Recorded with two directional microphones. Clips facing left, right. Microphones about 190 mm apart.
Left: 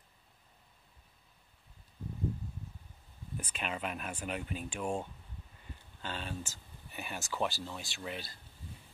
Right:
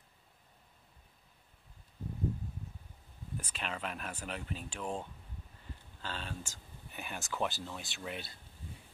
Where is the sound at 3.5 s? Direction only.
5° left (ahead or behind).